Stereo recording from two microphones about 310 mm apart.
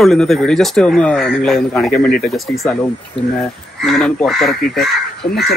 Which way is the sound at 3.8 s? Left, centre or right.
Centre.